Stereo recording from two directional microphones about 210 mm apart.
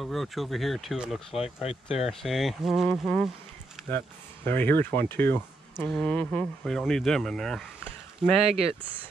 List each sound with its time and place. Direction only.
0.0 s speech: centre (ahead or behind)
1.6 s speech: 30° left (ahead or behind)
2.0 s speech: centre (ahead or behind)
4.5 s speech: 10° left (ahead or behind)